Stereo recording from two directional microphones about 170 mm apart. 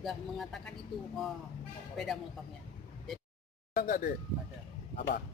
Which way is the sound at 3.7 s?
60° left (ahead or behind).